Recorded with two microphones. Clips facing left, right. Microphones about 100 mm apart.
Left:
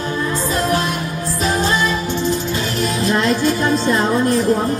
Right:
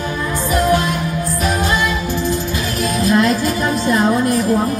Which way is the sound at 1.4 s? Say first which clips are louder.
Left 1 dB; 25° left (ahead or behind).